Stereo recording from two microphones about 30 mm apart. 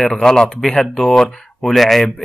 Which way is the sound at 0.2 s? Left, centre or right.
Left.